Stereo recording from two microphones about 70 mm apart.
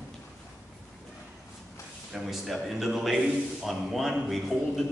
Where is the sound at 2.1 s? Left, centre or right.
Centre.